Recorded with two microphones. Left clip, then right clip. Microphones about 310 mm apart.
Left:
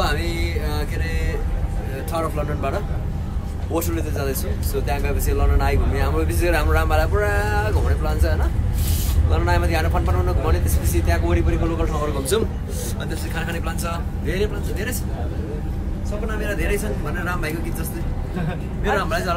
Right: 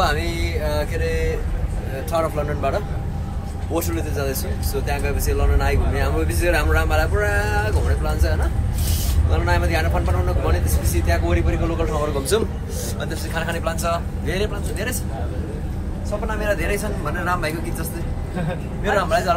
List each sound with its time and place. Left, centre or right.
0.0 s music: centre
2.1 s speech: centre
16.3 s speech: centre
18.9 s speech: centre